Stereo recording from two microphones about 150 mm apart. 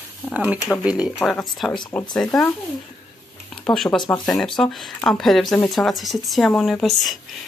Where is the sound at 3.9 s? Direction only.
30° left (ahead or behind).